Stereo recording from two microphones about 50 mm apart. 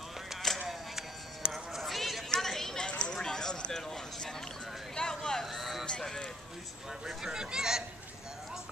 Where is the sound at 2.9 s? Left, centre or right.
Left.